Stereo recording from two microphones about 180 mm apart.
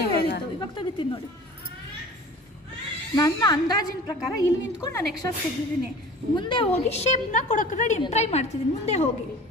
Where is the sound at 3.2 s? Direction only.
20° left (ahead or behind).